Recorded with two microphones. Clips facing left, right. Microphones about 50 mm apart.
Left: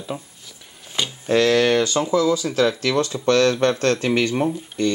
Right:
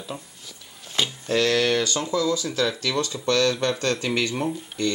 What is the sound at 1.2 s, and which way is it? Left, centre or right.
Speech, centre.